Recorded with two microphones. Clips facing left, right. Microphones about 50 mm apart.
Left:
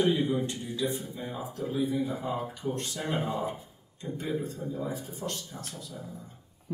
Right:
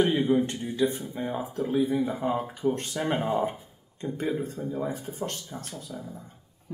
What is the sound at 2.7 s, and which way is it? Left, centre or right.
Speech, right.